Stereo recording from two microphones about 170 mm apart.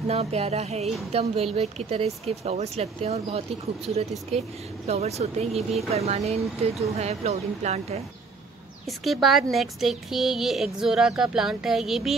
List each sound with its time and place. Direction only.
0.1 s speech: 40° right (ahead or behind)
8.8 s a child's voice: centre (ahead or behind)